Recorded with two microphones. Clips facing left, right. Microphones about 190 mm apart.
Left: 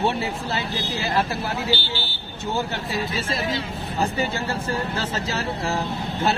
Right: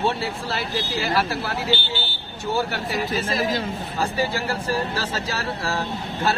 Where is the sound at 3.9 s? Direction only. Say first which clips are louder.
Even; 20° left (ahead or behind).